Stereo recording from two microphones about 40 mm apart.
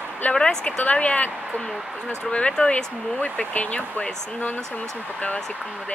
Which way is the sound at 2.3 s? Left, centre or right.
Left.